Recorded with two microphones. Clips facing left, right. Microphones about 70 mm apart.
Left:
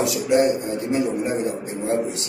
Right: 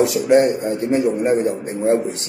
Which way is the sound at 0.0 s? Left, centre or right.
Right.